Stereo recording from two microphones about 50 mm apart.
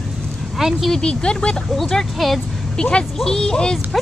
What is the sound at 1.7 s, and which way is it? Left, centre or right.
Speech, centre.